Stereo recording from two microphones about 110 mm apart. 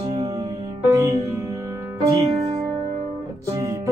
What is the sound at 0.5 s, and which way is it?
Music, 30° right (ahead or behind).